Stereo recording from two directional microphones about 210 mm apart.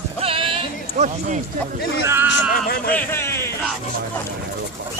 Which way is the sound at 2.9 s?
10° left (ahead or behind).